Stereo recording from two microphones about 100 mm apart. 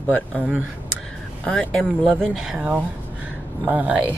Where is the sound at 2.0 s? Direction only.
5° right (ahead or behind).